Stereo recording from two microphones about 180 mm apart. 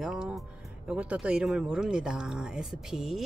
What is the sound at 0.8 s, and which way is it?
Speech, 5° right (ahead or behind).